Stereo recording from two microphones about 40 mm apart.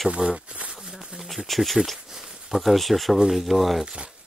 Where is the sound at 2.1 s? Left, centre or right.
Centre.